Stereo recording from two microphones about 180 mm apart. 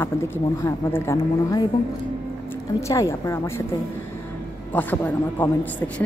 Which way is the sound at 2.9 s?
15° left (ahead or behind).